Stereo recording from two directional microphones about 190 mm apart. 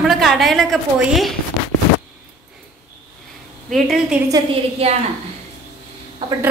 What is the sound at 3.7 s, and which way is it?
Speech, centre (ahead or behind).